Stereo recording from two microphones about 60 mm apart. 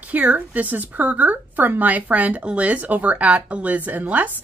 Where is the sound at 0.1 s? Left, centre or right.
Right.